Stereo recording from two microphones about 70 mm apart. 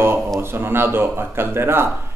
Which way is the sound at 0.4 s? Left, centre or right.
Right.